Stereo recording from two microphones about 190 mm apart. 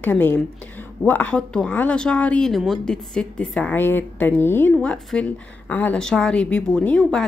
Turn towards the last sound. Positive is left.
turn(degrees=5)  # may be behind; listen again after turning